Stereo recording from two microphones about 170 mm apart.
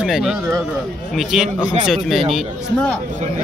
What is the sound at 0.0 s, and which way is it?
Speech, 5° right (ahead or behind).